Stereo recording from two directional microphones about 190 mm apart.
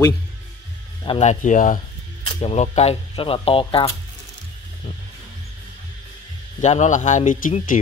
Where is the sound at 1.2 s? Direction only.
40° left (ahead or behind).